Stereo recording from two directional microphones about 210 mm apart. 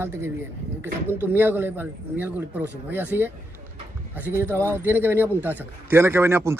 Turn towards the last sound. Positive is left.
turn(degrees=-10)  # may be behind; listen again after turning